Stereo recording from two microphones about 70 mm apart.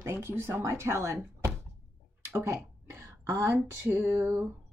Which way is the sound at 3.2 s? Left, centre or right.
Right.